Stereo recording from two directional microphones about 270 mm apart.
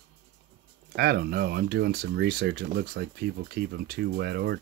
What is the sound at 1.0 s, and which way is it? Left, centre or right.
Speech, right.